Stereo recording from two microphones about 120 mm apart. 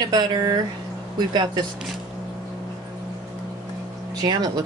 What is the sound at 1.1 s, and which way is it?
Speech, 35° right (ahead or behind).